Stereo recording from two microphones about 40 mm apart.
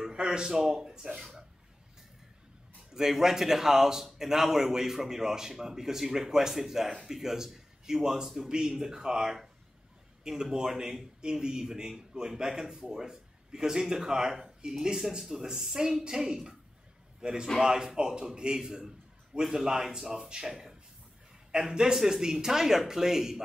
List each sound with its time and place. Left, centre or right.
0.0 s speech: centre
2.9 s a man's voice: centre